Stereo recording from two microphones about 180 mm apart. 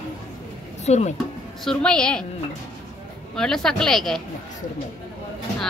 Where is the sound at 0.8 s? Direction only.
40° left (ahead or behind).